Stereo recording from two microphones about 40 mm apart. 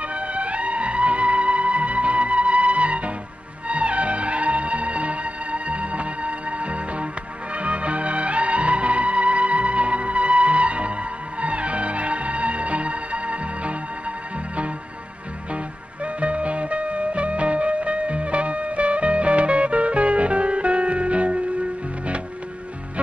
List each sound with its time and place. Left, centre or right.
0.0 s music: right
15.5 s music: right